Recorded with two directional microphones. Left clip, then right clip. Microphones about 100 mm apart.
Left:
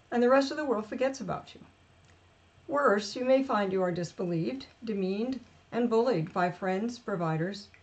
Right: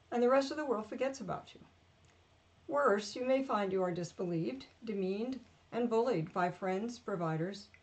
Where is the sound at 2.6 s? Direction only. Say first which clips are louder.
Left 5 dB; 10° right (ahead or behind).